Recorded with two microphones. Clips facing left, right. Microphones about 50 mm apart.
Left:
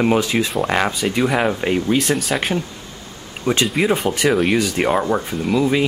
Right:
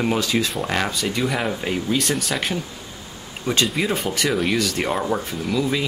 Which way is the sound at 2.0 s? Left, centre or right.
Centre.